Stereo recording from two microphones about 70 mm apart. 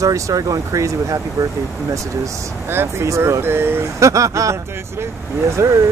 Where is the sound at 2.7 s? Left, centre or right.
Right.